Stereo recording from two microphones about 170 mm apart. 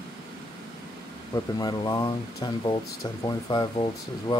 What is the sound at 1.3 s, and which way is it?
Speech, 20° left (ahead or behind).